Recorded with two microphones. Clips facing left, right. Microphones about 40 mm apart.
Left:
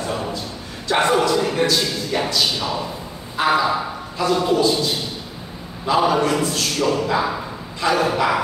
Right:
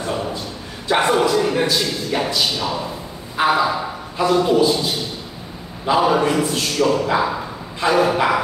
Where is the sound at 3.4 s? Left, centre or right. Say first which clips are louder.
Right 1 dB; centre.